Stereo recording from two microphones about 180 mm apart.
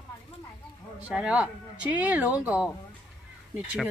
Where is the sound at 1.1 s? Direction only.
5° right (ahead or behind).